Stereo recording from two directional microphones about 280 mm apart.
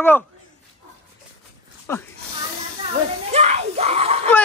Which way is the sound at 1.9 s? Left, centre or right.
Centre.